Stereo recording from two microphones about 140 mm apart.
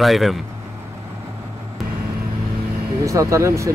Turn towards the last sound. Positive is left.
turn(degrees=-20)  # may be behind; listen again after turning